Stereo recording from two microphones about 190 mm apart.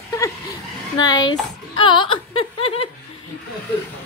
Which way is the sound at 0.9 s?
20° left (ahead or behind).